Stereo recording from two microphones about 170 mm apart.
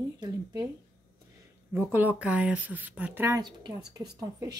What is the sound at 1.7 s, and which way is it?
A woman's voice, 10° right (ahead or behind).